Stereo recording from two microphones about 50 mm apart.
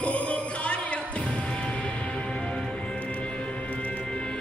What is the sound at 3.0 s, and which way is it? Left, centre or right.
Music, left.